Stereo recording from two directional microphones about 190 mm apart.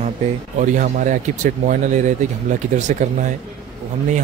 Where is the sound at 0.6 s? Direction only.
40° right (ahead or behind).